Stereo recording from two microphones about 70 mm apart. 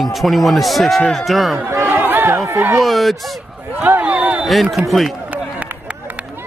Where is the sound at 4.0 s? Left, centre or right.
Centre.